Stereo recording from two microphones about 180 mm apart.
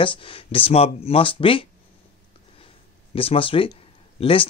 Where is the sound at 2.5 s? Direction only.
30° left (ahead or behind).